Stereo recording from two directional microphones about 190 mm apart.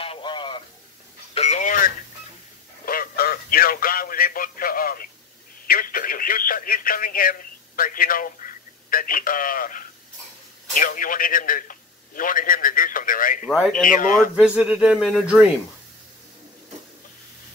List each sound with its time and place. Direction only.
0.0 s radio: 25° left (ahead or behind)
1.3 s telephone: 35° left (ahead or behind)
2.8 s a sound: 50° left (ahead or behind)
5.7 s a man's voice: 50° left (ahead or behind)
13.5 s speech: centre (ahead or behind)
13.8 s a man's voice: 45° left (ahead or behind)
14.3 s speech: 5° right (ahead or behind)